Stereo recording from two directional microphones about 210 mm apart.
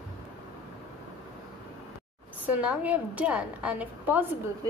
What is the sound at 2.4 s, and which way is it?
A woman's voice, 5° right (ahead or behind).